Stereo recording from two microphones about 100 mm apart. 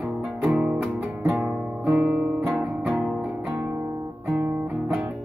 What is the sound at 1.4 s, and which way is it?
Guitar, 10° right (ahead or behind).